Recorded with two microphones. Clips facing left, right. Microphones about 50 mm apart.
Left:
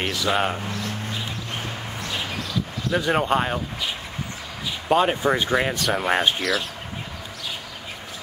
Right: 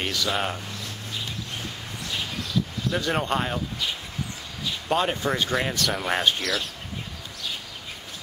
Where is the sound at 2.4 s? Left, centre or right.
Centre.